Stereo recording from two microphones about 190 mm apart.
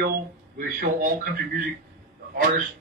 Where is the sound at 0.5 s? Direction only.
50° right (ahead or behind).